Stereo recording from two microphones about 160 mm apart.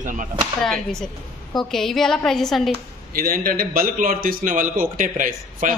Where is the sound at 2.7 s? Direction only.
65° right (ahead or behind).